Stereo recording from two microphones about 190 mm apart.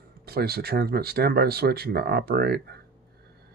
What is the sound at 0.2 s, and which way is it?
Speech, 55° right (ahead or behind).